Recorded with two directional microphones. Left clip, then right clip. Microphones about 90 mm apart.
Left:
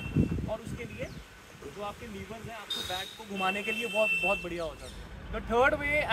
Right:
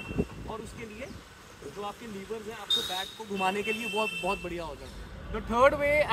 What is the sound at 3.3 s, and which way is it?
Speech, 35° left (ahead or behind).